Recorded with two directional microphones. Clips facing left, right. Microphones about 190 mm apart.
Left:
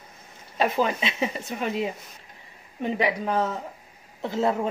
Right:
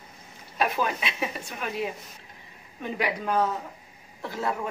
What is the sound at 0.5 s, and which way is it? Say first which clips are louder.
A woman's voice: left 3 dB; 25° left (ahead or behind).